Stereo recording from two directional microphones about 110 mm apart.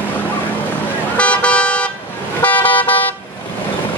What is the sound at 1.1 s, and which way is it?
Vehicle, 10° left (ahead or behind).